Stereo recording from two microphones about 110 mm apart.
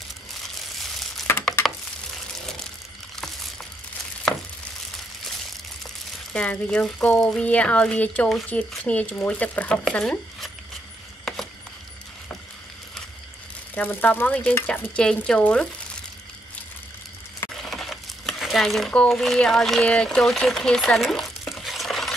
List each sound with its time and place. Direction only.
1.3 s a sound: 20° left (ahead or behind)
6.3 s speech: 10° left (ahead or behind)
13.7 s speech: 15° left (ahead or behind)
17.6 s crumpling: centre (ahead or behind)